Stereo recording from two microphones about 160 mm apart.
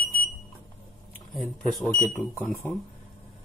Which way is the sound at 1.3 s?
Centre (ahead or behind).